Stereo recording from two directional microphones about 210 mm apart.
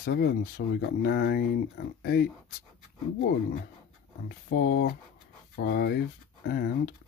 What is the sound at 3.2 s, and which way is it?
Speech, 35° left (ahead or behind).